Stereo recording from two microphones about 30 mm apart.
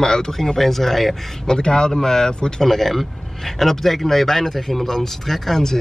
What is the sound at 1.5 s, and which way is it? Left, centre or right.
Speech, left.